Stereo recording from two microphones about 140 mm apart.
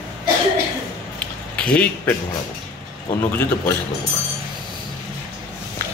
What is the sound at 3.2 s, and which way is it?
Speech, 15° left (ahead or behind).